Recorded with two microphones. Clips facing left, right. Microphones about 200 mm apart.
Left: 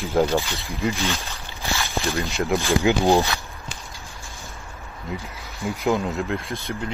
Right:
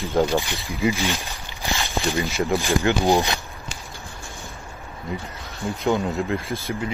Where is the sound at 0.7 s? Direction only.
Centre (ahead or behind).